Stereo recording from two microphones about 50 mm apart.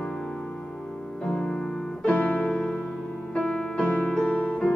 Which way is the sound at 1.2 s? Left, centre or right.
Centre.